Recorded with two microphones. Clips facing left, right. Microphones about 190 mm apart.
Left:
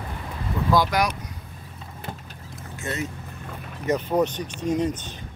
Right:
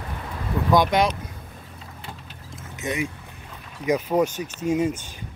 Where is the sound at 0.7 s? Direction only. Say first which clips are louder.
Right 3 dB; 20° right (ahead or behind).